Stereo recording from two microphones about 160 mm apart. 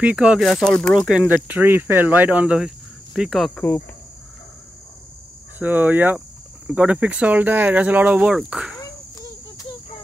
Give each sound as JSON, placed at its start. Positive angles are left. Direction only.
{"t": 0.0, "sound": "speech", "side_deg": -5}
{"t": 5.6, "sound": "speech", "side_deg": -10}
{"t": 8.7, "sound": "insect", "side_deg": 20}